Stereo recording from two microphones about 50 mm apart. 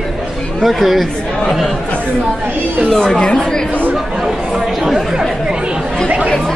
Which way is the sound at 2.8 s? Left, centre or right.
Centre.